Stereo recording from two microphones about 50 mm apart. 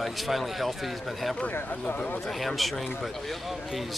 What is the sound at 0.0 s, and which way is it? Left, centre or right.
Speech, centre.